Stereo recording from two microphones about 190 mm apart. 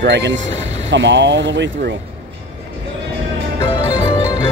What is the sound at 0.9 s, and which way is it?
Speech, 75° right (ahead or behind).